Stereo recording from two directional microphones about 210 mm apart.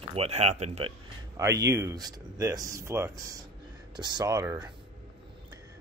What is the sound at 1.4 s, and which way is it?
Speech, 15° right (ahead or behind).